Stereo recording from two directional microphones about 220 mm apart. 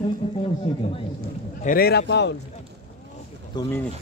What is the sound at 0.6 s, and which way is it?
Speech, 25° left (ahead or behind).